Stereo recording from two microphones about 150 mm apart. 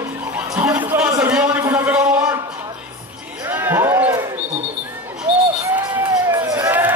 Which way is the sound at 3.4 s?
15° right (ahead or behind).